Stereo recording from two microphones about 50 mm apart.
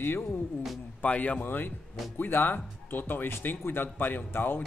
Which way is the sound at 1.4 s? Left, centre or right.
Left.